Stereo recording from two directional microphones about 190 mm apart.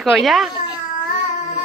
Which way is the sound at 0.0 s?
Centre (ahead or behind).